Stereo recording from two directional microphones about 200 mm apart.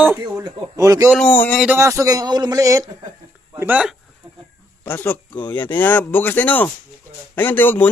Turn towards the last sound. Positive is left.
turn(degrees=10)  # may be behind; listen again after turning